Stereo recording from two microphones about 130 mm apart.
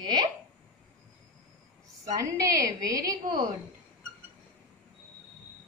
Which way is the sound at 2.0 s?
25° right (ahead or behind).